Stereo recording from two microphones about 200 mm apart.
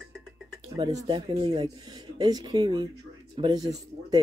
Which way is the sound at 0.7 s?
20° right (ahead or behind).